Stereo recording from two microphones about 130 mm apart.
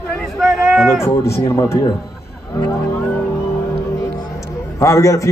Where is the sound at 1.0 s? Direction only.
20° left (ahead or behind).